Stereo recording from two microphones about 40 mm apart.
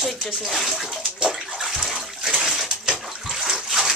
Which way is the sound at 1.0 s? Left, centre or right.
Centre.